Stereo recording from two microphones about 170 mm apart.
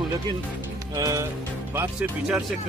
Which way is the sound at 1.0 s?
20° right (ahead or behind).